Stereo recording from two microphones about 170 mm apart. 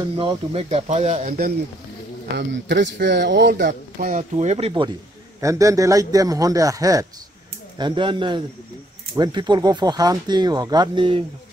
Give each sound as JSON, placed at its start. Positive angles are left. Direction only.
{"t": 0.1, "sound": "speech", "side_deg": -35}
{"t": 2.3, "sound": "speech", "side_deg": -90}
{"t": 4.2, "sound": "speech", "side_deg": -40}
{"t": 5.4, "sound": "speech", "side_deg": -20}